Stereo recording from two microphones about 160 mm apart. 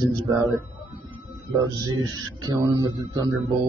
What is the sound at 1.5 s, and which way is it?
Speech, 25° right (ahead or behind).